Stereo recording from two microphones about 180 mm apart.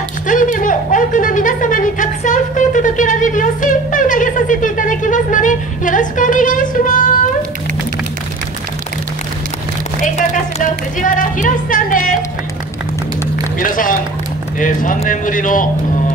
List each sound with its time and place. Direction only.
0.3 s speech: 45° left (ahead or behind)
10.1 s speech: 45° left (ahead or behind)
13.6 s speech: 50° left (ahead or behind)